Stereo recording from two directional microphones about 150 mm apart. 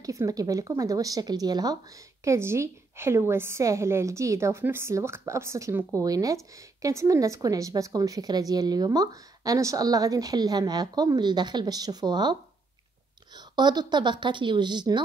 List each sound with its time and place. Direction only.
0.0 s a woman's voice: 20° right (ahead or behind)